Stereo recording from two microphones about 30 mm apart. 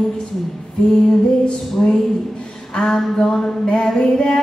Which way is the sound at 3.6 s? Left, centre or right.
Left.